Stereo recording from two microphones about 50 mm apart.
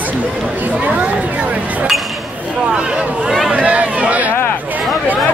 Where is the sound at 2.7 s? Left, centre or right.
Right.